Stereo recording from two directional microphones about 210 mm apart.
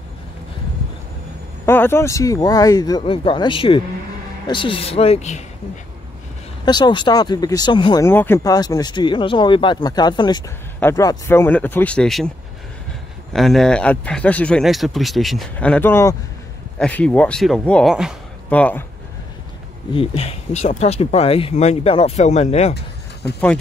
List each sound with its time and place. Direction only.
1.7 s speech: 10° left (ahead or behind); by 5.4 s 30° left (ahead or behind)
6.6 s speech: 20° left (ahead or behind); by 12.3 s centre (ahead or behind)
13.3 s speech: centre (ahead or behind)
19.9 s speech: 25° left (ahead or behind)